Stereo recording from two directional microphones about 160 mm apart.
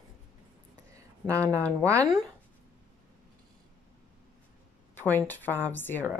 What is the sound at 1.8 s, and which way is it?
Speech, 20° right (ahead or behind).